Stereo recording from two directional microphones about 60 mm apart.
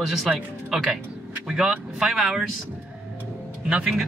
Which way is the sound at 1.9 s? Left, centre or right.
Centre.